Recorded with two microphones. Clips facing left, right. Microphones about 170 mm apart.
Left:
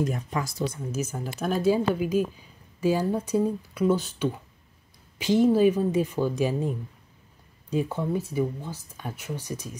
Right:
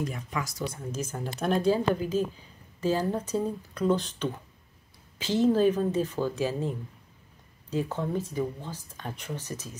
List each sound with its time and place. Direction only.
0.0 s speech: 40° left (ahead or behind)
0.9 s speech: 5° left (ahead or behind)
7.7 s speech: 10° left (ahead or behind)